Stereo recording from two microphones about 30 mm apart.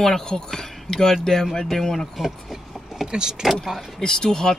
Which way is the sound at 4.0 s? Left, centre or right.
Centre.